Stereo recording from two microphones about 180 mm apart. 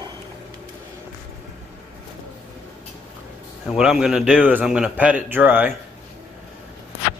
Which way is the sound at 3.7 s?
5° right (ahead or behind).